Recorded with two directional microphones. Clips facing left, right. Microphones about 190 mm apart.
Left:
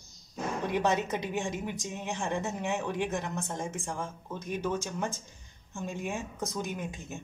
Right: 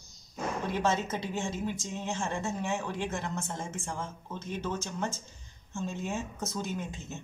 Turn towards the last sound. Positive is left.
turn(degrees=15)  # may be behind; listen again after turning